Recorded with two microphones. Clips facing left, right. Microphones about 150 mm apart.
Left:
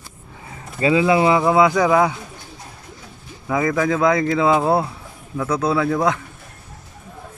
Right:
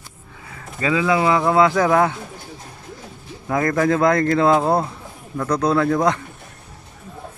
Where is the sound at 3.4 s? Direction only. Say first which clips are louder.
Right 1 dB; centre (ahead or behind).